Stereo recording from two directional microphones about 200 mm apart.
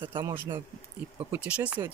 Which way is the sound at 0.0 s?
25° right (ahead or behind).